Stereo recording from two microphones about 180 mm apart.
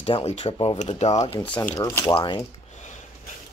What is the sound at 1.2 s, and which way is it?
Speech, 25° left (ahead or behind).